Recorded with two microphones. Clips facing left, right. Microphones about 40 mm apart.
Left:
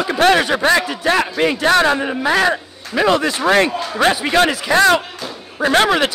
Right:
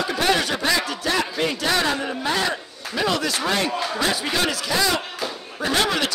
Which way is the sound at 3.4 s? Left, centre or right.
Left.